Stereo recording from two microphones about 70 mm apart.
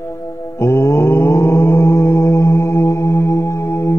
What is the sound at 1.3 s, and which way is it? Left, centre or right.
Mantra, left.